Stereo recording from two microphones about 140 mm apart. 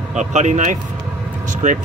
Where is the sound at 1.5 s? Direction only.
60° right (ahead or behind).